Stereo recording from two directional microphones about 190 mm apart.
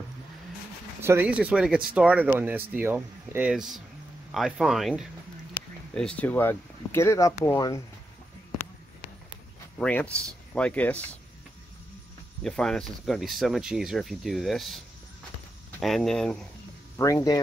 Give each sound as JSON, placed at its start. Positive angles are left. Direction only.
{"t": 1.0, "sound": "speech", "side_deg": -10}
{"t": 9.8, "sound": "speech", "side_deg": 5}
{"t": 12.4, "sound": "speech", "side_deg": 5}
{"t": 15.8, "sound": "speech", "side_deg": 0}
{"t": 17.0, "sound": "speech", "side_deg": 20}